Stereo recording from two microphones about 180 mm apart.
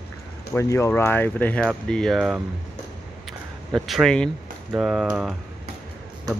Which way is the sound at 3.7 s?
Centre (ahead or behind).